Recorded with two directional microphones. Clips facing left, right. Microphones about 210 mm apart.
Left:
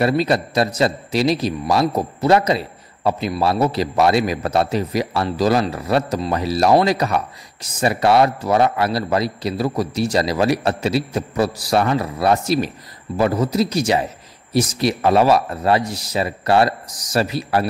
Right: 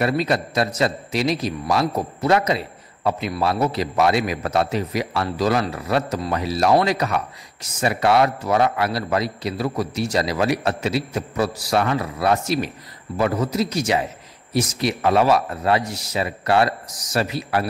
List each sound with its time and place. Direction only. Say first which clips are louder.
0.0 s a man's voice: left 3 dB; 35° left (ahead or behind)